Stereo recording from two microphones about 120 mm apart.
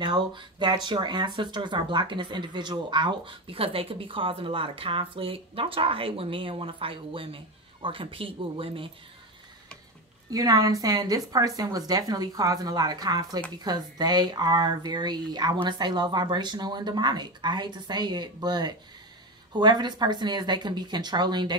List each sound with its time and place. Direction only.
0.0 s speech: 40° right (ahead or behind)
10.3 s speech: 30° right (ahead or behind)